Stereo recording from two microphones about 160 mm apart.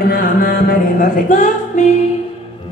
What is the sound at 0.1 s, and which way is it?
Music, 65° left (ahead or behind).